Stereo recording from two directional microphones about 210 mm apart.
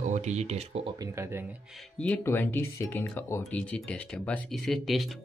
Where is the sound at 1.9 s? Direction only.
10° left (ahead or behind).